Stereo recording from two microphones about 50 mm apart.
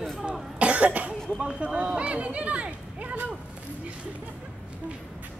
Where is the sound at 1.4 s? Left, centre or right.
Right.